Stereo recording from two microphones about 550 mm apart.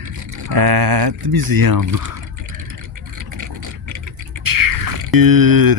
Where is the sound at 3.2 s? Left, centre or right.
Right.